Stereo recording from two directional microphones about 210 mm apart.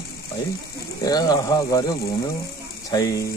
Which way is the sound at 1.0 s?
15° left (ahead or behind).